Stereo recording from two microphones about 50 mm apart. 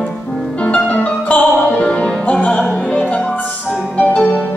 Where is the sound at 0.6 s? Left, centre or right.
Left.